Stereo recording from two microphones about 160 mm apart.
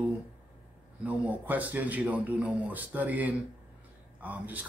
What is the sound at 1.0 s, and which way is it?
Speech, 10° right (ahead or behind).